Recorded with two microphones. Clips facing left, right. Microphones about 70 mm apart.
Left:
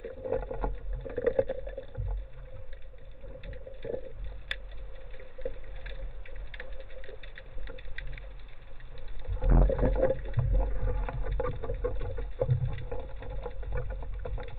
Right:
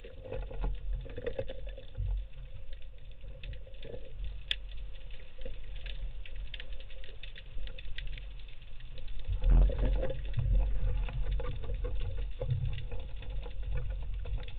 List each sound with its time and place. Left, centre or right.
0.0 s boat: left
3.3 s patter: left
4.5 s a sound: left
5.4 s boat: left
6.5 s typing: left
9.2 s a sound: left
10.5 s vehicle: left
13.6 s vehicle: left